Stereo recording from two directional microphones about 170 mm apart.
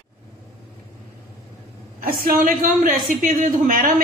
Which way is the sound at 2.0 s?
60° right (ahead or behind).